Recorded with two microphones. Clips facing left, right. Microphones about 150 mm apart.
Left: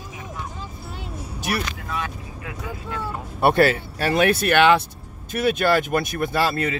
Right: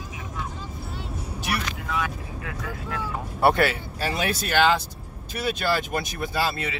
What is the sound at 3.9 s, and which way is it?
Speech, 60° left (ahead or behind).